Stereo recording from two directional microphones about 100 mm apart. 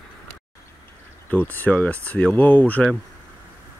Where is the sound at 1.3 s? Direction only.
20° left (ahead or behind).